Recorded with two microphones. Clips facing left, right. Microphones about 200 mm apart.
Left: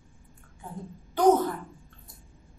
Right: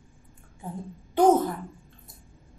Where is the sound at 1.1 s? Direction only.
25° right (ahead or behind).